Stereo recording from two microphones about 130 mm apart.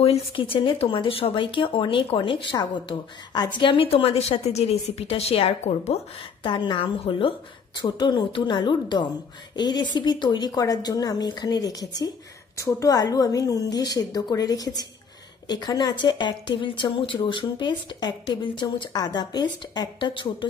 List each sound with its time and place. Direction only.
0.0 s speech: 45° left (ahead or behind)
6.4 s a woman's voice: 40° left (ahead or behind)